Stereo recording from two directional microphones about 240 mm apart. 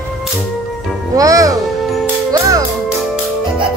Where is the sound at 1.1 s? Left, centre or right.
Centre.